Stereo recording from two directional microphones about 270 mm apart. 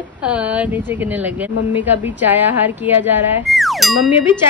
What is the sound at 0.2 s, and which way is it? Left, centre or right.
Speech, centre.